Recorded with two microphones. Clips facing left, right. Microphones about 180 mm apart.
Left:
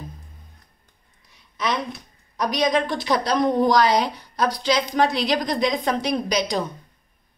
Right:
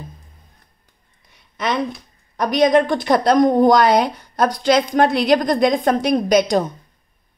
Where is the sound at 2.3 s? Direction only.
55° right (ahead or behind).